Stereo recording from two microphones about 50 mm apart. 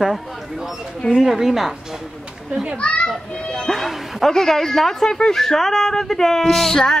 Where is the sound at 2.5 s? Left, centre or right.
Centre.